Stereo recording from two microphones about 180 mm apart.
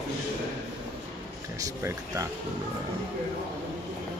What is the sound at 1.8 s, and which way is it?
Speech, 15° right (ahead or behind).